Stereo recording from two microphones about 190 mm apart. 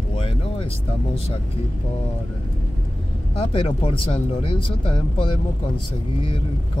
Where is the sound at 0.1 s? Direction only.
30° left (ahead or behind).